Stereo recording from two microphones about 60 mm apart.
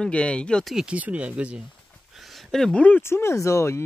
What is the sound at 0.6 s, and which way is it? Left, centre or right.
Speech, centre.